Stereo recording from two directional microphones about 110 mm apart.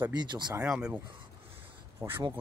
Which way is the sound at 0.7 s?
10° right (ahead or behind).